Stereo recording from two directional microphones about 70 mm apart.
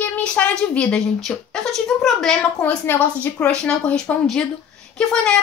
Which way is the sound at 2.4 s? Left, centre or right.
Left.